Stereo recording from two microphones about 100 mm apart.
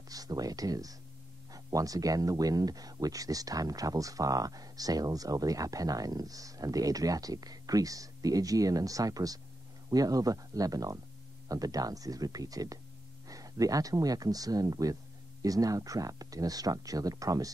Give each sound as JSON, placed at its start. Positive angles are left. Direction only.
{"t": 0.1, "sound": "speech", "side_deg": -40}